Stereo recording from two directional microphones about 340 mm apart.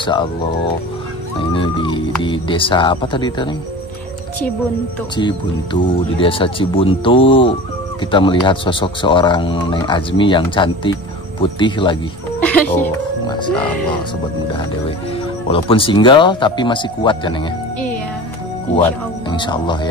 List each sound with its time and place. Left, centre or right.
0.0 s speech: centre
1.4 s speech: centre
5.1 s speech: centre
15.4 s speech: centre
18.8 s speech: centre